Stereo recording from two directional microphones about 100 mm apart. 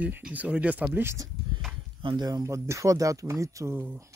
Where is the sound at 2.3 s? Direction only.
35° right (ahead or behind).